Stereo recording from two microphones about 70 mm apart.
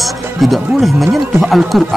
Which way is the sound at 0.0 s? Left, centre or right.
Centre.